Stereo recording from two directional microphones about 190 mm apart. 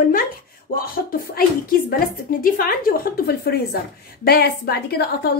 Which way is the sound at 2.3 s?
50° left (ahead or behind).